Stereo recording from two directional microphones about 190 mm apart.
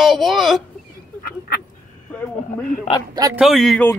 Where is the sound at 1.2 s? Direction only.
55° left (ahead or behind).